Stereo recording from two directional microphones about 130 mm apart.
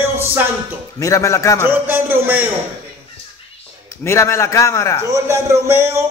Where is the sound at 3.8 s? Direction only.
20° left (ahead or behind).